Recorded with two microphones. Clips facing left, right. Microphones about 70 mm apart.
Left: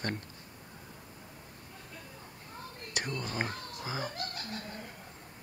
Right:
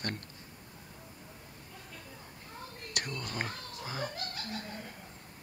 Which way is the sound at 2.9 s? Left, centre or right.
Centre.